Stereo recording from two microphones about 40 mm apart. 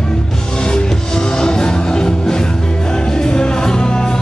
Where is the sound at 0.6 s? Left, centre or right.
Left.